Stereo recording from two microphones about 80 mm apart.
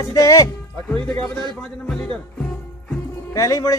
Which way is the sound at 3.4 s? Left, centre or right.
Left.